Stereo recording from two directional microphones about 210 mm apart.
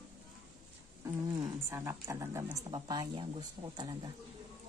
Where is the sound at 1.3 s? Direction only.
15° right (ahead or behind).